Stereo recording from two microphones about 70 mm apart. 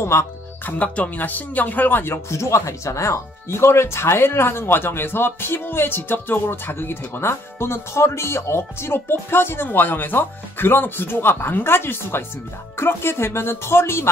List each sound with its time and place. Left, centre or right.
0.0 s speech: left
0.7 s speech: centre
2.2 s speech: left